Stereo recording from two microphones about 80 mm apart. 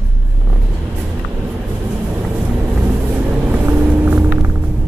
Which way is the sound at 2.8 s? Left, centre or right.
Right.